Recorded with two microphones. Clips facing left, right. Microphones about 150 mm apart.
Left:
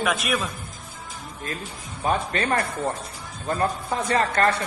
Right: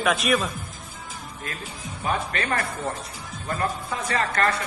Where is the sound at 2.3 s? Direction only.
25° left (ahead or behind).